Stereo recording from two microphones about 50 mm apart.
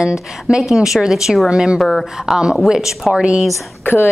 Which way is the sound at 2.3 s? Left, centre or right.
Centre.